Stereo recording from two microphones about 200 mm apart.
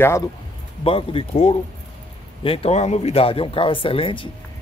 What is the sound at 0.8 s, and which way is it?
Speech, 25° left (ahead or behind).